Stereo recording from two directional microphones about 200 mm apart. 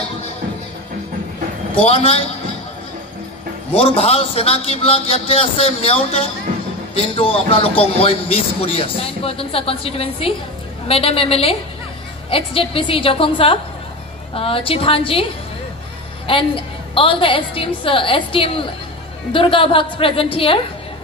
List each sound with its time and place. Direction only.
1.8 s a man's voice: 30° left (ahead or behind)
3.7 s a man's voice: 30° left (ahead or behind)
16.3 s a man's voice: 25° left (ahead or behind)